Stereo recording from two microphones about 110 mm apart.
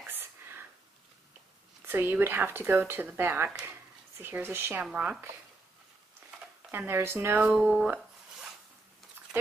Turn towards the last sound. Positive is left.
turn(degrees=-15)  # may be behind; listen again after turning